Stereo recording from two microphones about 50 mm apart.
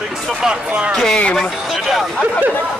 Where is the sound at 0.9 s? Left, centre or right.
Centre.